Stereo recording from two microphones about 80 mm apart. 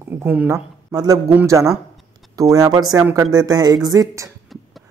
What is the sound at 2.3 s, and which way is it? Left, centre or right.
Speech, right.